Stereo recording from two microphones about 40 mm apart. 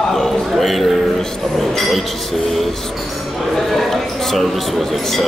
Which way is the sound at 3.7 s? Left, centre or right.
Centre.